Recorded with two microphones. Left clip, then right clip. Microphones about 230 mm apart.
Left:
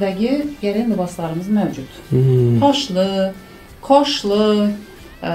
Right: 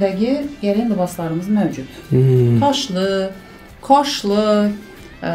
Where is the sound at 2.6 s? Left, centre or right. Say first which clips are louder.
Left 2 dB; right.